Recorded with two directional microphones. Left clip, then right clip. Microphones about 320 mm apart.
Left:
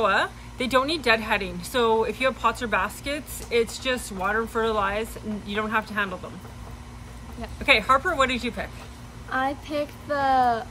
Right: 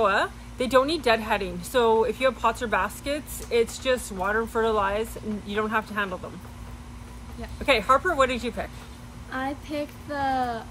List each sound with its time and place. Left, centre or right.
0.0 s speech: centre
7.6 s speech: centre
9.3 s speech: centre